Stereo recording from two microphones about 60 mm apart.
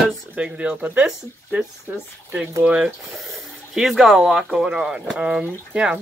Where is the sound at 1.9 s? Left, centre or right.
Right.